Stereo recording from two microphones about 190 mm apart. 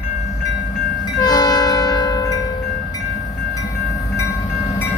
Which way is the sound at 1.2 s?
20° left (ahead or behind).